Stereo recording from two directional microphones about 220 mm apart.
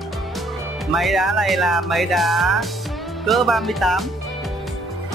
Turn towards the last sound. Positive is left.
turn(degrees=0)  # may be behind; listen again after turning